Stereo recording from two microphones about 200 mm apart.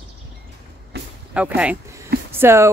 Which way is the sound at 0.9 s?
55° right (ahead or behind).